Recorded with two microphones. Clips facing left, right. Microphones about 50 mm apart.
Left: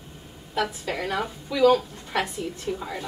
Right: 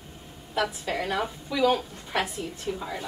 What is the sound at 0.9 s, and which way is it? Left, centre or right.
A woman's voice, centre.